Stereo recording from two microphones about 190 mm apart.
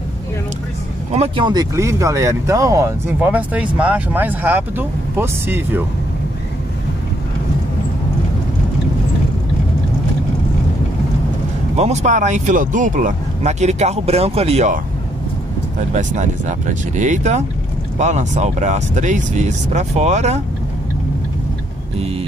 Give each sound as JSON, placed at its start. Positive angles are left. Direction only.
{"t": 1.1, "sound": "speech", "side_deg": -30}
{"t": 11.7, "sound": "speech", "side_deg": -35}
{"t": 15.9, "sound": "speech", "side_deg": -40}